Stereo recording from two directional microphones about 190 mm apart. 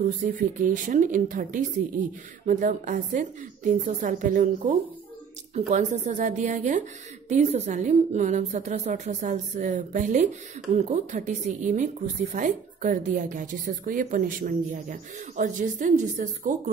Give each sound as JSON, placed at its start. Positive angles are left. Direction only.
{"t": 0.2, "sound": "a woman's voice", "side_deg": -45}